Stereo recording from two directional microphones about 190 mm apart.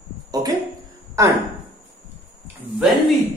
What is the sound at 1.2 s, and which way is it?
Speech, 15° right (ahead or behind).